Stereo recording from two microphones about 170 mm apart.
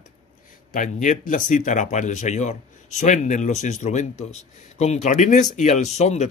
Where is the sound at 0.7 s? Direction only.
50° left (ahead or behind).